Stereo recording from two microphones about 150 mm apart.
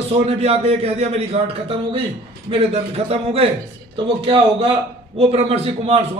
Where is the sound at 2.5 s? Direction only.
40° right (ahead or behind).